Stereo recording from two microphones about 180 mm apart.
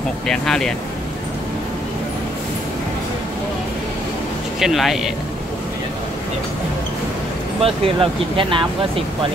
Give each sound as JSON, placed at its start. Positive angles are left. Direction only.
{"t": 0.3, "sound": "speech", "side_deg": 5}
{"t": 4.6, "sound": "speech", "side_deg": 0}
{"t": 7.6, "sound": "speech", "side_deg": -30}